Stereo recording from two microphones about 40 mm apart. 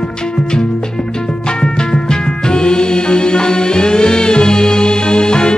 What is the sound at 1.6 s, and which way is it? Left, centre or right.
Music, centre.